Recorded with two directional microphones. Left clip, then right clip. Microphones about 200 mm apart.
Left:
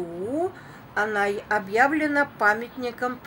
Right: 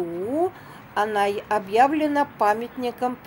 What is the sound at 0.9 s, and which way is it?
A woman's voice, 15° right (ahead or behind).